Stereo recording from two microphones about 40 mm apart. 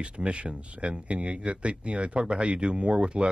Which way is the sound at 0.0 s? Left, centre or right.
Right.